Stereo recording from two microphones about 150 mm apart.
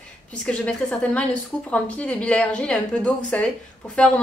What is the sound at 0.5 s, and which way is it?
A woman's voice, 5° left (ahead or behind).